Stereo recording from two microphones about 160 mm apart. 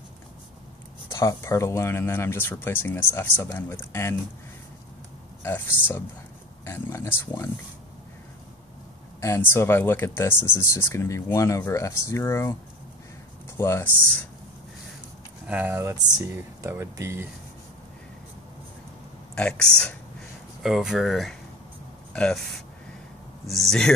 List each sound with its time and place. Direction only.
1.1 s speech: 20° left (ahead or behind)
5.4 s speech: 10° left (ahead or behind)
9.2 s speech: 15° left (ahead or behind)
13.6 s speech: 15° left (ahead or behind)
15.4 s speech: 10° right (ahead or behind)
19.3 s speech: 5° left (ahead or behind)
23.4 s speech: centre (ahead or behind)